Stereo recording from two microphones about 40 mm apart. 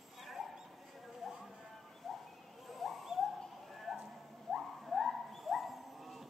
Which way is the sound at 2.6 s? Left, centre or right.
Centre.